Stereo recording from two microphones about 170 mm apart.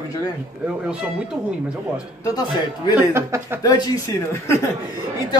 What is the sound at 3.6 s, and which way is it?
Speech, 25° left (ahead or behind).